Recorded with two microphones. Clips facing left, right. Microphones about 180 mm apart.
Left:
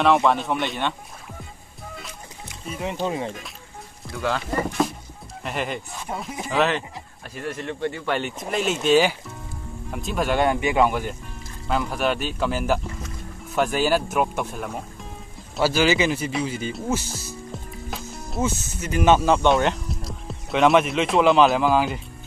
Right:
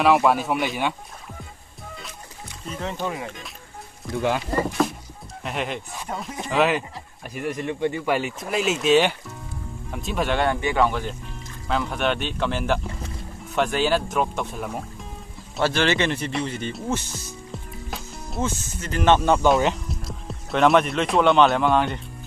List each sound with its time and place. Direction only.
0.0 s speech: 5° right (ahead or behind)
2.7 s speech: 15° left (ahead or behind)
4.1 s speech: 25° right (ahead or behind)
4.6 s speech: centre (ahead or behind)
7.3 s speech: 15° right (ahead or behind); by 17.4 s 5° left (ahead or behind)
17.8 s music: centre (ahead or behind)
18.8 s speech: 10° left (ahead or behind)